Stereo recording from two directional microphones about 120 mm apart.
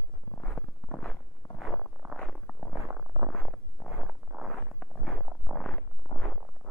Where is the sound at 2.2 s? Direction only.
10° left (ahead or behind).